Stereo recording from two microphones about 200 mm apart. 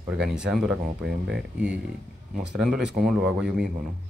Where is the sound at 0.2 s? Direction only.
5° right (ahead or behind).